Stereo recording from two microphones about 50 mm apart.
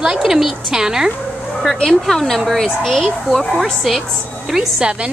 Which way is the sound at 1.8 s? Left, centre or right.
Centre.